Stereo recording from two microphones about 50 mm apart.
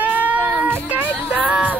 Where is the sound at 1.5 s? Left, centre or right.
Right.